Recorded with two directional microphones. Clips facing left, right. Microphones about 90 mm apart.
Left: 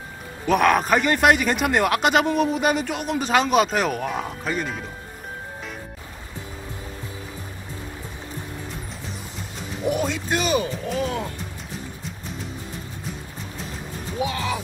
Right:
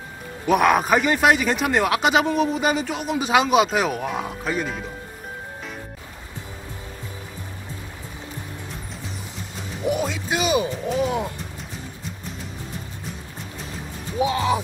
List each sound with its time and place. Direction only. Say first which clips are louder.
0.5 s a man's voice: right 1 dB; 10° right (ahead or behind)
9.8 s music: even; centre (ahead or behind)
14.2 s music: right 5 dB; 30° right (ahead or behind)